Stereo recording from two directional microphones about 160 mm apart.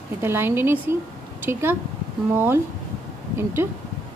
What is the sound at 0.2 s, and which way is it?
A woman's voice, 15° right (ahead or behind).